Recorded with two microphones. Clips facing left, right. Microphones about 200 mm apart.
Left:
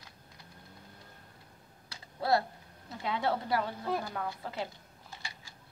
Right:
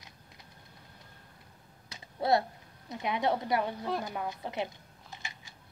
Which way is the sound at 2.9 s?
20° right (ahead or behind).